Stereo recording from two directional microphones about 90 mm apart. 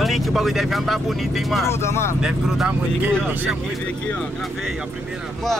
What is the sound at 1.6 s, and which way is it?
Speech, 30° left (ahead or behind).